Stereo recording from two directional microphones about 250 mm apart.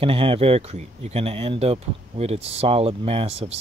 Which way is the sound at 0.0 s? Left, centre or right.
Right.